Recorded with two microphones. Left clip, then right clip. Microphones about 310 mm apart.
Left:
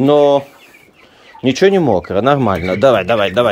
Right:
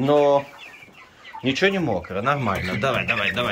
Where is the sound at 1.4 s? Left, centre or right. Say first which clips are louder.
Left 9 dB; left.